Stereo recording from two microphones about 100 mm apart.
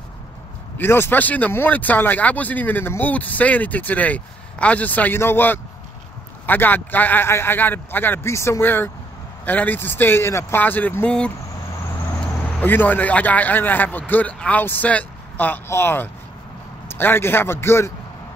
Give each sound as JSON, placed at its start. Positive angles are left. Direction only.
{"t": 0.7, "sound": "a man's voice", "side_deg": 20}
{"t": 11.1, "sound": "speech", "side_deg": 10}
{"t": 12.5, "sound": "a man's voice", "side_deg": 15}